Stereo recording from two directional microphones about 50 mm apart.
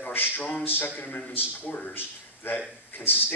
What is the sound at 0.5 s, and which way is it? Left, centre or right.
Speech, left.